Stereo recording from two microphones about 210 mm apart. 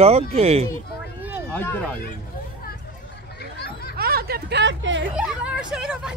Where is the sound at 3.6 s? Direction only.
50° left (ahead or behind).